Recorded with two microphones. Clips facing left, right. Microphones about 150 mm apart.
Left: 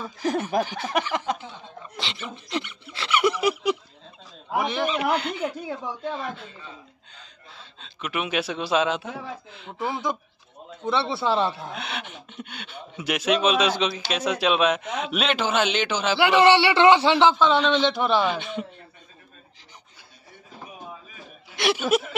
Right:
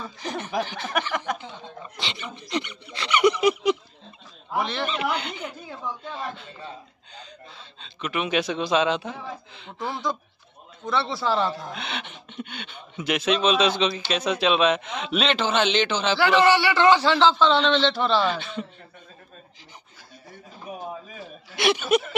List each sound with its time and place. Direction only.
0.0 s a sound: 5° left (ahead or behind)
0.7 s speech: 10° left (ahead or behind)
2.0 s a man's voice: centre (ahead or behind)
5.4 s speech: 55° left (ahead or behind)
7.8 s a man's voice: 5° left (ahead or behind)
10.9 s speech: 25° left (ahead or behind)
11.7 s speech: 5° left (ahead or behind)
16.4 s speech: 25° left (ahead or behind)
21.5 s a man's voice: centre (ahead or behind)